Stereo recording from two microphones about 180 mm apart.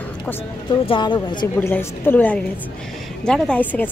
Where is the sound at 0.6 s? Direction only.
25° left (ahead or behind).